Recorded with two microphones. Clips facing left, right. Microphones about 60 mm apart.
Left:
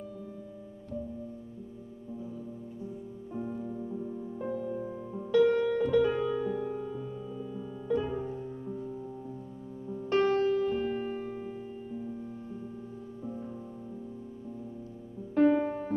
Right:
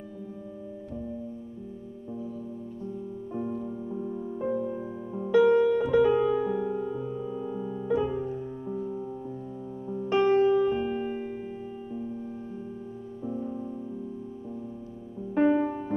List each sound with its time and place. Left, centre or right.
3.9 s music: right
7.9 s music: centre
8.6 s music: right
15.3 s music: centre